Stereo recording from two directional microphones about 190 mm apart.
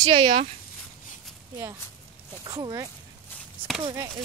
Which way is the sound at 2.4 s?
20° right (ahead or behind).